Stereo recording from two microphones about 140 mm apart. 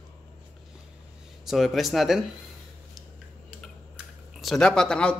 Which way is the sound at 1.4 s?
Centre (ahead or behind).